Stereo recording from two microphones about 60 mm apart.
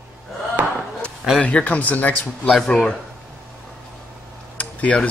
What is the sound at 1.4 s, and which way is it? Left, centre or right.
Speech, left.